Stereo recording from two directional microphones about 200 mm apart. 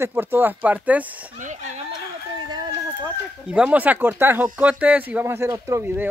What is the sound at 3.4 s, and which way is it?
Speech, 5° right (ahead or behind).